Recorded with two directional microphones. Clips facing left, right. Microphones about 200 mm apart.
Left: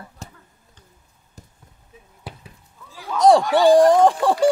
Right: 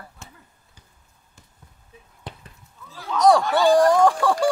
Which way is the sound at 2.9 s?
15° left (ahead or behind).